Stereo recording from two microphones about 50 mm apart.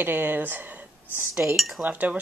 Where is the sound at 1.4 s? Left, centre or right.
Centre.